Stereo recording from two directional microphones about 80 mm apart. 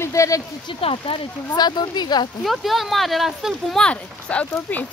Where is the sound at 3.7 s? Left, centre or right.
Centre.